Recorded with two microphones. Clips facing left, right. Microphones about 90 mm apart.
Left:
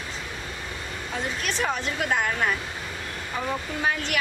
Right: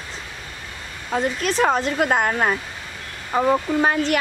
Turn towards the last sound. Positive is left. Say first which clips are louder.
# right 8 dB
turn(degrees=-50)  # may be behind; listen again after turning